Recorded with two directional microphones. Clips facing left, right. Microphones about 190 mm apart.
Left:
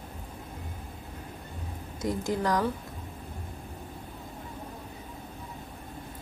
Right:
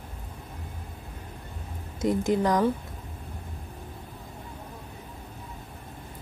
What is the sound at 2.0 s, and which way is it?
Speech, 20° right (ahead or behind).